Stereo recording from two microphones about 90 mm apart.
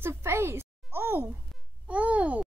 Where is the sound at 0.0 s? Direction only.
25° right (ahead or behind).